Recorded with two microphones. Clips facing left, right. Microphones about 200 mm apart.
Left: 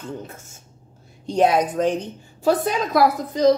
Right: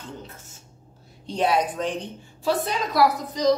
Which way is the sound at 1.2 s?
45° left (ahead or behind).